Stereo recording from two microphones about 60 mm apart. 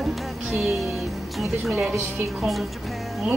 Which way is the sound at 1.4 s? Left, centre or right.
Centre.